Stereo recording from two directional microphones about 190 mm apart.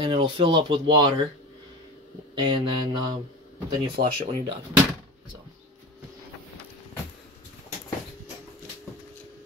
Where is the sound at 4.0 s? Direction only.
60° right (ahead or behind).